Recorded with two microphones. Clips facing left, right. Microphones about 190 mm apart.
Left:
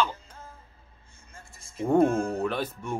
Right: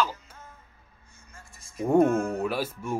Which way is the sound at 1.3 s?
25° left (ahead or behind).